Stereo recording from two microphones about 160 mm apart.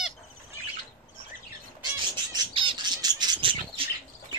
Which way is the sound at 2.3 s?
30° right (ahead or behind).